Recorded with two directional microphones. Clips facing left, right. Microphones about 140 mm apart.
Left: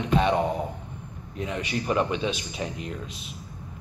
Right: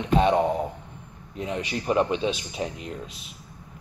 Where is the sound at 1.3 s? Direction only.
30° right (ahead or behind).